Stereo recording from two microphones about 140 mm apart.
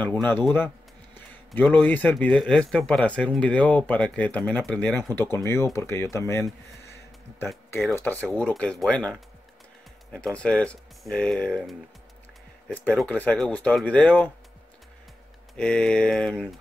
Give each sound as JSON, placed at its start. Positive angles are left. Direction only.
{"t": 0.3, "sound": "speech", "side_deg": 15}
{"t": 1.1, "sound": "a sound", "side_deg": 15}
{"t": 1.9, "sound": "speech", "side_deg": 10}
{"t": 7.9, "sound": "speech", "side_deg": 10}
{"t": 15.5, "sound": "speech", "side_deg": 5}